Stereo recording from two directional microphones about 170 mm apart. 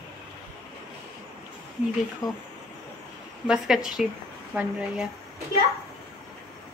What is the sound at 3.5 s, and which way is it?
A woman's voice, 5° right (ahead or behind).